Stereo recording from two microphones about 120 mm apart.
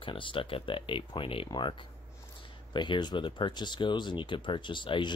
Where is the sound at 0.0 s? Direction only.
45° left (ahead or behind).